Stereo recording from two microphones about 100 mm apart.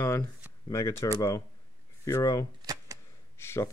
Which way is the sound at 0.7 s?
30° left (ahead or behind).